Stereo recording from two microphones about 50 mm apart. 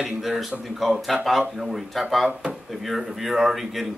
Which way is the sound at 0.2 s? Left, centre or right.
Centre.